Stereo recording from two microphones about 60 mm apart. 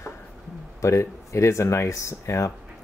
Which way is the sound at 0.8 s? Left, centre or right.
Left.